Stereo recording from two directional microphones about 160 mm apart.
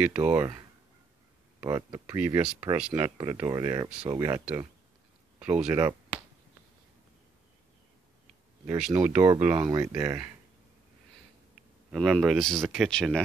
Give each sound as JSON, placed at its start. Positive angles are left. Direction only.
{"t": 0.0, "sound": "speech", "side_deg": -10}
{"t": 1.6, "sound": "speech", "side_deg": -20}
{"t": 2.1, "sound": "speech", "side_deg": -10}
{"t": 3.2, "sound": "speech", "side_deg": -20}
{"t": 5.4, "sound": "speech", "side_deg": -10}
{"t": 8.7, "sound": "speech", "side_deg": -5}
{"t": 11.9, "sound": "speech", "side_deg": -5}